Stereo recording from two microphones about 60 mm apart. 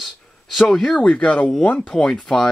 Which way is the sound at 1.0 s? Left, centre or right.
Centre.